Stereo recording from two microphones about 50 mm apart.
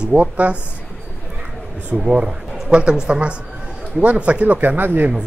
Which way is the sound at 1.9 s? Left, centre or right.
Centre.